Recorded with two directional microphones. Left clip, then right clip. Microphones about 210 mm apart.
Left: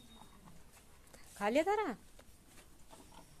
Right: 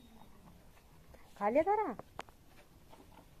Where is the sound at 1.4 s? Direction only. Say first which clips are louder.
Right 2 dB; 25° left (ahead or behind).